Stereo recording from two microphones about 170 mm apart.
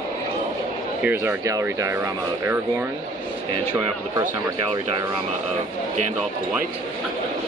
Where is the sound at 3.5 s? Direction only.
30° right (ahead or behind).